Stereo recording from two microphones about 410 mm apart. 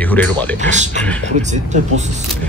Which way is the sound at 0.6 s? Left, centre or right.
Centre.